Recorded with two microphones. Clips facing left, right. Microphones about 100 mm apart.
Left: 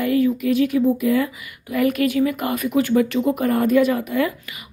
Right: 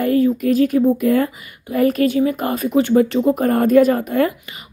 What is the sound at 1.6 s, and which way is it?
A woman's voice, 35° right (ahead or behind).